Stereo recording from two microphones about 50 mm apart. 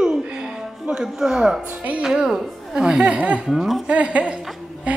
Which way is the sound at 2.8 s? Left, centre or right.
Centre.